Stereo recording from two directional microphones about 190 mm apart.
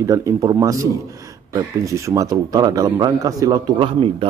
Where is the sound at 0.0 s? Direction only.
15° right (ahead or behind).